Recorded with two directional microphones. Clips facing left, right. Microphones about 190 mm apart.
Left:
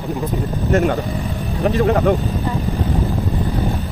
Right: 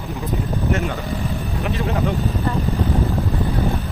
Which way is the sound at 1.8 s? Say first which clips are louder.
Left 8 dB; 55° left (ahead or behind).